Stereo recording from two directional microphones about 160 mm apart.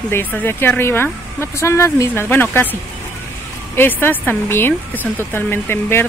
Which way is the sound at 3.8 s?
10° left (ahead or behind).